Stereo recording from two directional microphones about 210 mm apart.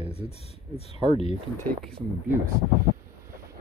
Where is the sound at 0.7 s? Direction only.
30° left (ahead or behind).